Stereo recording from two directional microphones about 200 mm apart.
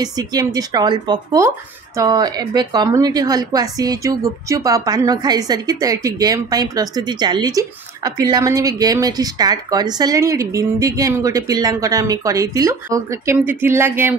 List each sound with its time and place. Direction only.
0.0 s a woman's voice: 20° right (ahead or behind)